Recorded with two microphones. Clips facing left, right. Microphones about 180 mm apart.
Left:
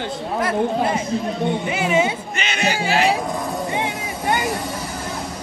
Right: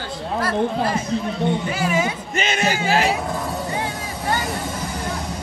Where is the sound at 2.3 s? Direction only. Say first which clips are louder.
Right 1 dB; 45° right (ahead or behind).